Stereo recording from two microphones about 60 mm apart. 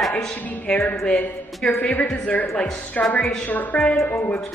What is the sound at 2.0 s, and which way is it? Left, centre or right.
A woman's voice, centre.